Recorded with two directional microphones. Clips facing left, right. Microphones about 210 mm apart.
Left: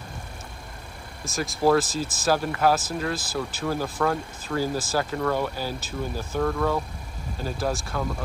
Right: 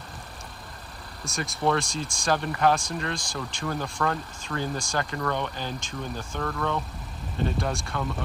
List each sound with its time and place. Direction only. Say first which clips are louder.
1.2 s speech: left 4 dB; centre (ahead or behind)